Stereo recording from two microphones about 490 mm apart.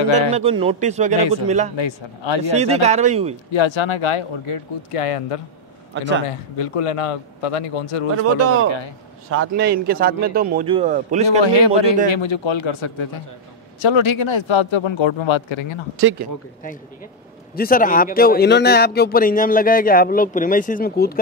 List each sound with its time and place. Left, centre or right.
0.3 s a man's voice: centre
1.8 s speech: left
2.5 s a man's voice: centre
3.5 s a man's voice: left
8.2 s speech: right
8.6 s a man's voice: left
9.3 s a man's voice: right
11.4 s a man's voice: left
16.0 s speech: right
17.6 s speech: centre